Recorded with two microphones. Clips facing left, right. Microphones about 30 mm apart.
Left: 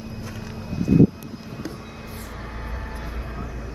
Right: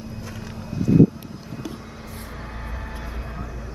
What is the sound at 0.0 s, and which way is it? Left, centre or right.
Vehicle, centre.